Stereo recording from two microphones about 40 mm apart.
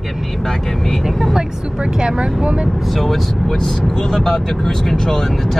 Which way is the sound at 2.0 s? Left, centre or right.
Right.